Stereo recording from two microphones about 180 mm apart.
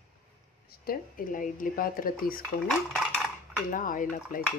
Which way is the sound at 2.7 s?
Centre (ahead or behind).